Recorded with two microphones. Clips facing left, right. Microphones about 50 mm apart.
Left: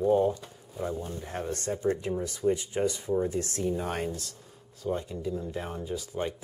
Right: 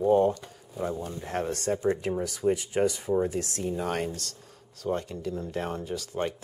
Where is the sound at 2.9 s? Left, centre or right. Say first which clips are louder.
Right 2 dB; right.